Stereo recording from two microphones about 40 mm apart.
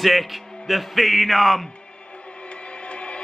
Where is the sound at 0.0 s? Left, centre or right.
Centre.